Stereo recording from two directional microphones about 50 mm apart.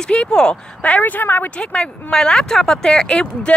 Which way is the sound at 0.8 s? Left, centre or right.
Left.